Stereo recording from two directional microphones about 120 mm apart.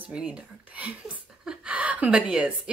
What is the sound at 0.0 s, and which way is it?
Speech, 10° right (ahead or behind).